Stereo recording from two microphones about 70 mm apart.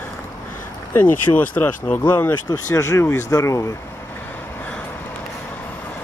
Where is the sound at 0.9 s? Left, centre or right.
Left.